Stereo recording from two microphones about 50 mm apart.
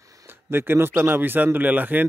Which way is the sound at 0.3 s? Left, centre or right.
Right.